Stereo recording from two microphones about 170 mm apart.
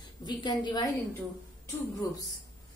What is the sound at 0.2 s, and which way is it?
Speech, 25° left (ahead or behind).